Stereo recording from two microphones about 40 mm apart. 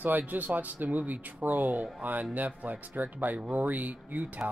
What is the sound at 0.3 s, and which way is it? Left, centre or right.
Speech, right.